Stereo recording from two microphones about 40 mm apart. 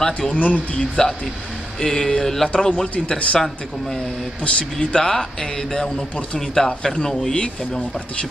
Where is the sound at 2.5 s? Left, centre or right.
Left.